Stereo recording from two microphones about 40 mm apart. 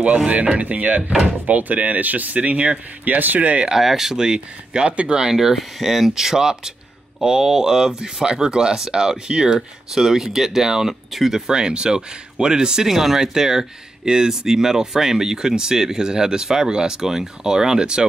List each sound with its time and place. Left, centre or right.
0.3 s speech: right
3.1 s speech: right
3.8 s speech: centre
5.3 s speech: centre
12.8 s speech: centre